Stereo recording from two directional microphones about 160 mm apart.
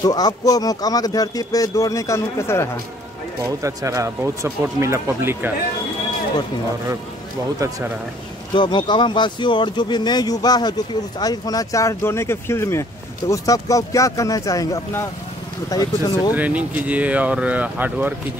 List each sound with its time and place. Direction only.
0.0 s speech: 25° left (ahead or behind)
3.4 s speech: 20° right (ahead or behind)
7.5 s speech: 20° right (ahead or behind)
8.5 s speech: 30° left (ahead or behind)
16.3 s speech: 10° right (ahead or behind)